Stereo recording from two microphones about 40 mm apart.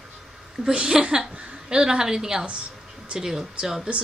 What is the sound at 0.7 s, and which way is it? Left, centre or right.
A woman's voice, right.